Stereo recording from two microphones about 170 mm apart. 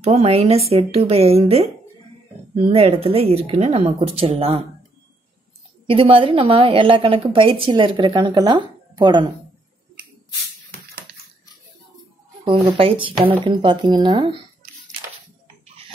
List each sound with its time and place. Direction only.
0.0 s a woman's voice: 35° right (ahead or behind)
5.9 s a woman's voice: 30° right (ahead or behind)
12.4 s a woman's voice: 30° right (ahead or behind)